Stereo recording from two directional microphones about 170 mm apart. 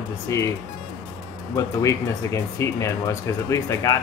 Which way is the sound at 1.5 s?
20° left (ahead or behind).